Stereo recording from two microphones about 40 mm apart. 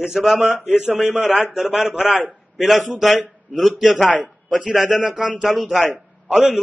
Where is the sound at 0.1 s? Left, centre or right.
Centre.